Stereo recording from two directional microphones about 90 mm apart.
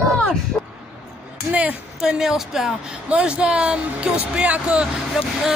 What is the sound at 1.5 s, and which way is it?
Speech, 15° right (ahead or behind).